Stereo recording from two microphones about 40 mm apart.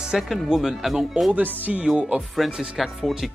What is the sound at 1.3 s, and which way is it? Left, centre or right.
Speech, right.